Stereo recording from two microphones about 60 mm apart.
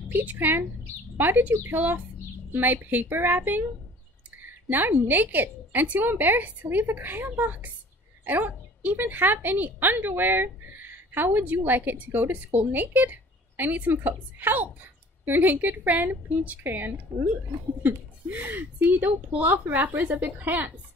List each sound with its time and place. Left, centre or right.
0.1 s a woman's voice: right